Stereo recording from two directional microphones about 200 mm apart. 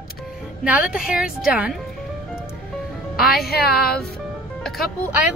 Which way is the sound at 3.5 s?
50° left (ahead or behind).